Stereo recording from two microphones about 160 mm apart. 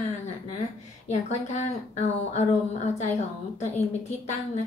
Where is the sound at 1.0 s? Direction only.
45° left (ahead or behind).